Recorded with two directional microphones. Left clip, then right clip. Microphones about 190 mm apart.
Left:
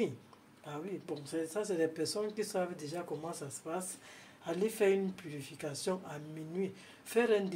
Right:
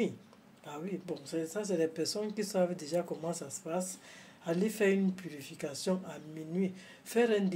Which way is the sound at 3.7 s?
10° right (ahead or behind).